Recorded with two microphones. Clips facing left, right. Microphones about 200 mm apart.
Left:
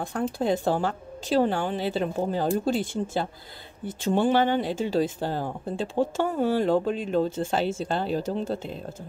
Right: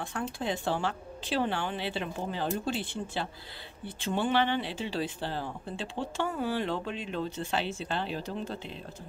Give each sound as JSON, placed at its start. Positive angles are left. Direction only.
{"t": 0.0, "sound": "speech", "side_deg": 40}